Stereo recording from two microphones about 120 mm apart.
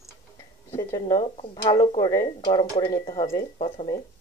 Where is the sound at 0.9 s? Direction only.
30° left (ahead or behind).